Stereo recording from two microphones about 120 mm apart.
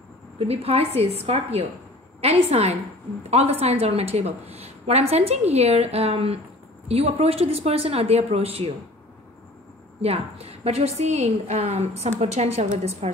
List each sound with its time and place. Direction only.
0.4 s a woman's voice: 55° right (ahead or behind)
10.0 s a woman's voice: 55° right (ahead or behind)